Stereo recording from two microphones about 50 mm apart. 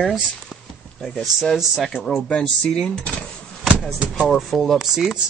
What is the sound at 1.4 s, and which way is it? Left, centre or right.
Speech, centre.